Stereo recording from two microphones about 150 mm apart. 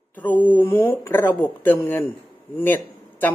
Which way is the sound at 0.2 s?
10° left (ahead or behind).